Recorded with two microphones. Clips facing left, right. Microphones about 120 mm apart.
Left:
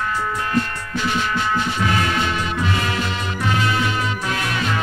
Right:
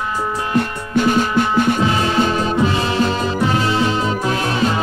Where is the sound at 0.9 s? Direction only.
50° right (ahead or behind).